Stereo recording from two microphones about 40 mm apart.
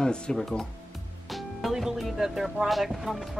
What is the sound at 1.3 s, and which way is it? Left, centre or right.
Music, centre.